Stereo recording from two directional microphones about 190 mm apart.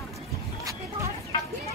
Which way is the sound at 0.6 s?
15° right (ahead or behind).